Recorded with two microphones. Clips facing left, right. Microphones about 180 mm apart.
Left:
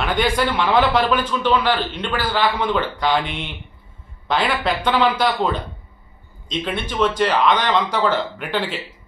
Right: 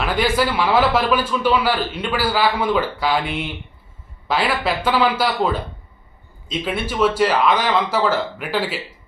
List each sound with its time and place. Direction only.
0.0 s a man's voice: centre (ahead or behind)